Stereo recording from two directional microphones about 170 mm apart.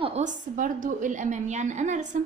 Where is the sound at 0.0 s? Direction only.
40° right (ahead or behind).